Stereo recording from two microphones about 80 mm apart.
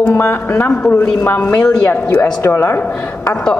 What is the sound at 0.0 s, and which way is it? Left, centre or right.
A woman's voice, left.